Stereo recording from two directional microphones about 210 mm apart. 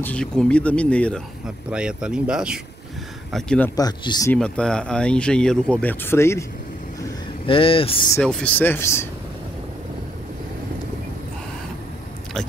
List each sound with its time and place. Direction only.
0.0 s speech: 5° left (ahead or behind)
4.3 s speech: 5° left (ahead or behind)
7.0 s vehicle: 25° left (ahead or behind)
8.2 s speech: 5° left (ahead or behind)